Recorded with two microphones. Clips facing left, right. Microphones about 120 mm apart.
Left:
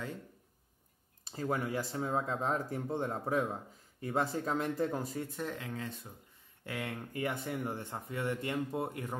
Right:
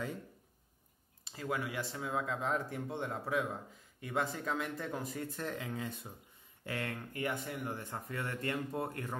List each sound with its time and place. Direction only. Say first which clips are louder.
1.2 s speech: left 3 dB; 40° left (ahead or behind)
5.4 s speech: even; centre (ahead or behind)
6.9 s speech: left 4 dB; 30° left (ahead or behind)